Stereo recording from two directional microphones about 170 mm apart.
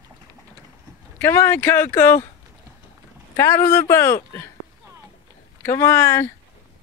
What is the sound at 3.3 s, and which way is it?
A woman's voice, 15° left (ahead or behind).